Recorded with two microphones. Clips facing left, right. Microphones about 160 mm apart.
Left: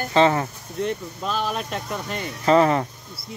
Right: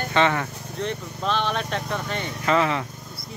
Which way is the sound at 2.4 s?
40° left (ahead or behind).